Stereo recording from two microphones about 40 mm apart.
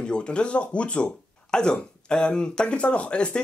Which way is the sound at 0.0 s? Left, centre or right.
Left.